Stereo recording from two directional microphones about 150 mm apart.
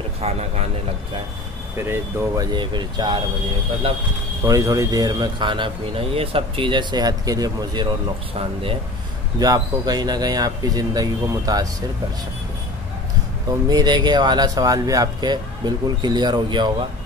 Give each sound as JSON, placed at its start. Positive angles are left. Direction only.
{"t": 0.2, "sound": "a sound", "side_deg": -45}
{"t": 1.8, "sound": "speech", "side_deg": -20}
{"t": 4.5, "sound": "speech", "side_deg": -20}
{"t": 9.4, "sound": "speech", "side_deg": -25}
{"t": 13.5, "sound": "speech", "side_deg": -25}